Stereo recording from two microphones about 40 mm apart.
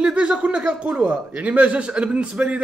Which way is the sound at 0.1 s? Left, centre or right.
Right.